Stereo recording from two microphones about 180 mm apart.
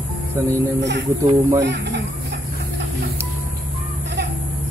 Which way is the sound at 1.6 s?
70° right (ahead or behind).